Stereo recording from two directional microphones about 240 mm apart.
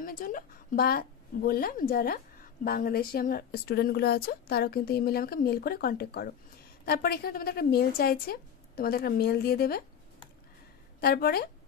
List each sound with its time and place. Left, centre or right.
0.0 s speech: left
11.0 s speech: left